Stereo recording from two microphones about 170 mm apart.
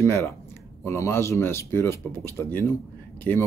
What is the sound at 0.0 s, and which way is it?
Speech, 15° left (ahead or behind).